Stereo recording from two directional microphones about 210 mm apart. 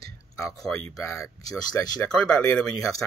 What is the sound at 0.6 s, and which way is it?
Speech, 15° left (ahead or behind).